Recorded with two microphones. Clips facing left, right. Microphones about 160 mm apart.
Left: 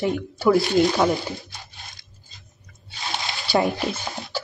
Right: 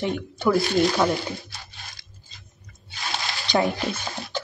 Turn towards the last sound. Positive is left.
turn(degrees=0)  # may be behind; listen again after turning